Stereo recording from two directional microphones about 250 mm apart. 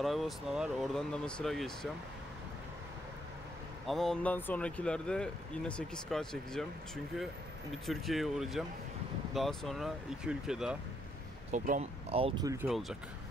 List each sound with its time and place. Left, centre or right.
0.0 s speech: centre
3.8 s speech: centre
7.8 s speech: centre
11.5 s speech: right
12.6 s speech: centre